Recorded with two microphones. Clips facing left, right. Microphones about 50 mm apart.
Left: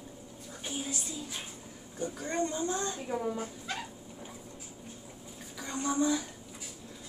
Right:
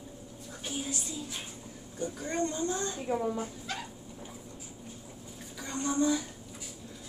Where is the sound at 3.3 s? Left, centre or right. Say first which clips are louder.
Right 1 dB; centre.